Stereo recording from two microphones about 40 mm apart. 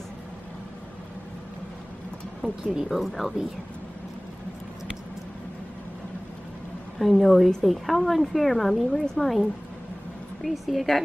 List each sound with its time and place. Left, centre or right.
2.6 s speech: centre
2.9 s a woman's voice: centre
7.0 s a woman's voice: centre